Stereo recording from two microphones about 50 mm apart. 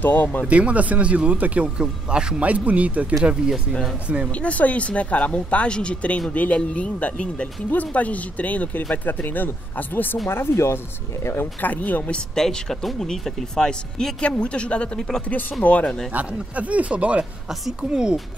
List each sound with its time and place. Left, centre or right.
0.0 s speech: left
0.5 s speech: right
2.4 s speech: right
3.3 s speech: centre
4.3 s speech: left
10.2 s speech: left
11.6 s speech: left
12.4 s speech: centre
14.2 s speech: left
15.0 s speech: centre
15.6 s speech: left
16.1 s speech: right
17.5 s a woman's voice: centre